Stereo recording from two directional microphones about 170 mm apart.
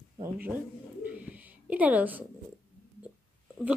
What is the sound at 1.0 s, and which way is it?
Bird, 10° right (ahead or behind).